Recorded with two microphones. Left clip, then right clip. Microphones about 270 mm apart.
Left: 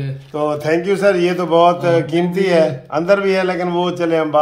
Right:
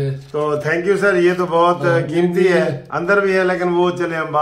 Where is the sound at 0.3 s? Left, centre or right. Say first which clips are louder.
Left 2 dB; left.